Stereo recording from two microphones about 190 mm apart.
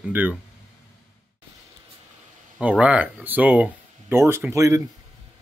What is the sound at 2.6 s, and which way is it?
Speech, 5° right (ahead or behind).